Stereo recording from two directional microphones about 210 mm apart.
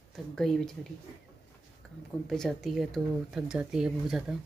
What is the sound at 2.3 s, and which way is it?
Speech, centre (ahead or behind).